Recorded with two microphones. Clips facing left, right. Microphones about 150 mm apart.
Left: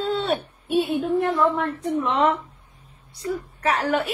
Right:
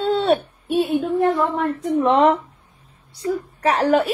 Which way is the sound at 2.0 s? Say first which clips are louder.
Right 7 dB; 40° right (ahead or behind).